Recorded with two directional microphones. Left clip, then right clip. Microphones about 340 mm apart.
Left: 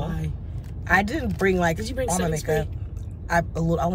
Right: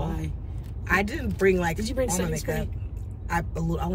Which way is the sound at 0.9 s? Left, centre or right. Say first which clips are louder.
Left 4 dB; centre.